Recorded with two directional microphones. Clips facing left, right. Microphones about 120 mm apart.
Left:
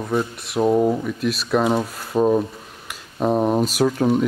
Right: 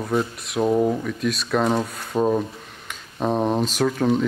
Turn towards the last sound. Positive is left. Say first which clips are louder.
# left 2 dB
turn(degrees=10)  # may be behind; listen again after turning